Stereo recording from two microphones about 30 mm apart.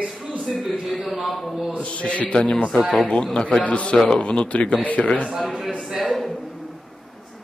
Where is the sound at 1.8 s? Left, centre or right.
Left.